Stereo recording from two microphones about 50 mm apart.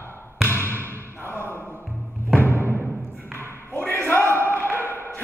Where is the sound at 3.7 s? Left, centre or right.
Left.